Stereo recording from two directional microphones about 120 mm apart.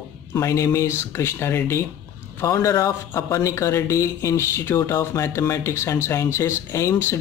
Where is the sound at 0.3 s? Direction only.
25° left (ahead or behind).